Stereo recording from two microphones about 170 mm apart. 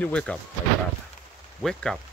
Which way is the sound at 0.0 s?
5° left (ahead or behind).